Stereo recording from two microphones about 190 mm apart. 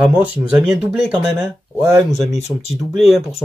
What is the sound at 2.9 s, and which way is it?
Speech, centre (ahead or behind).